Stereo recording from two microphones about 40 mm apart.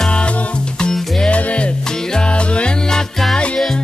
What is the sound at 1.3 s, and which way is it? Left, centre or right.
Music, left.